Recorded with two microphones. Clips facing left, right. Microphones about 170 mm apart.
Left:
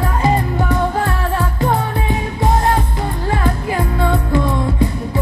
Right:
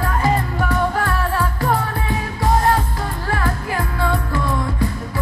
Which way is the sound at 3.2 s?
20° left (ahead or behind).